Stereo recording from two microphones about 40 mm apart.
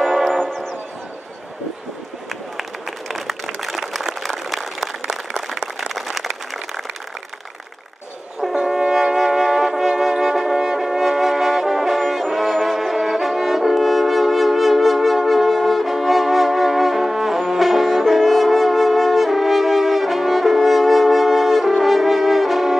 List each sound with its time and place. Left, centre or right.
0.0 s church bell: centre
3.1 s a sound: centre
8.6 s brass instrument: centre